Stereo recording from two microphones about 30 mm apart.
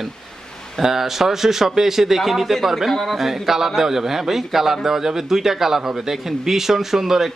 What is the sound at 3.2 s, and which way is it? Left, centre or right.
A man's voice, centre.